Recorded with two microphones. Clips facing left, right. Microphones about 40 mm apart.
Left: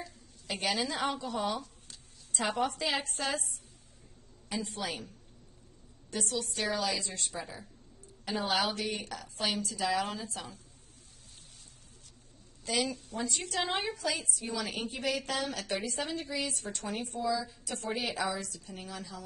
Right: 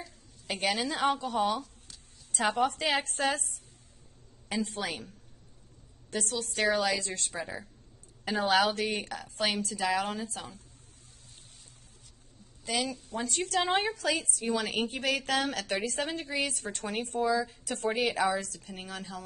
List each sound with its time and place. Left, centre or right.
0.7 s a woman's voice: right
2.3 s a woman's voice: right
6.1 s a woman's voice: right
12.7 s a woman's voice: centre
13.2 s a woman's voice: right